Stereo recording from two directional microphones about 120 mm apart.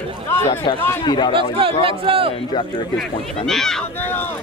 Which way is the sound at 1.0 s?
35° left (ahead or behind).